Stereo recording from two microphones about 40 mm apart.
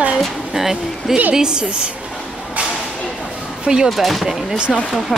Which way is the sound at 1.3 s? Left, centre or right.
Centre.